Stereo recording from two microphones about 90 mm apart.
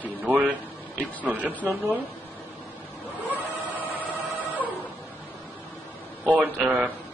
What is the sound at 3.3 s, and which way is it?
Printer, 20° right (ahead or behind).